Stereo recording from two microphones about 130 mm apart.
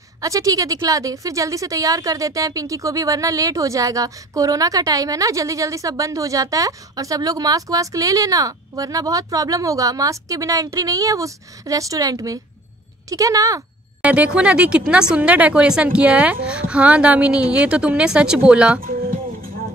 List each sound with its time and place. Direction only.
0.2 s speech: 25° right (ahead or behind)
14.0 s speech: 10° right (ahead or behind)